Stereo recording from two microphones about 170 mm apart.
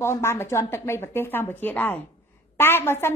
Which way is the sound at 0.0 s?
15° left (ahead or behind).